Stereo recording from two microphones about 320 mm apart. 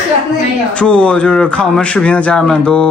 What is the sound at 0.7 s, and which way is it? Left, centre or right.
A man's voice, centre.